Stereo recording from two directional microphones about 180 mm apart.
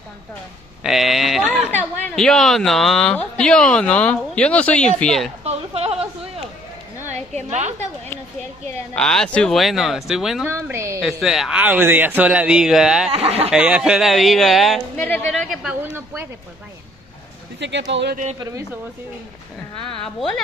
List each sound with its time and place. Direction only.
0.8 s a sound: centre (ahead or behind)
2.0 s speech: 5° left (ahead or behind)
5.4 s a sound: 35° right (ahead or behind)
7.4 s speech: 40° right (ahead or behind)
8.9 s speech: 5° left (ahead or behind)
10.5 s a woman's voice: 15° right (ahead or behind)
11.0 s speech: centre (ahead or behind)
13.1 s speech: 35° right (ahead or behind)
13.5 s speech: 5° right (ahead or behind)
15.8 s a woman's voice: 15° right (ahead or behind)
17.6 s speech: 75° right (ahead or behind)